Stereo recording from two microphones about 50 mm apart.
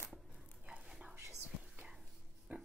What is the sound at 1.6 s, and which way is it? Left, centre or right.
Whispering, right.